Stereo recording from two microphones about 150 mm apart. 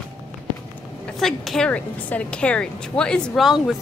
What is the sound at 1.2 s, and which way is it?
A woman's voice, centre (ahead or behind).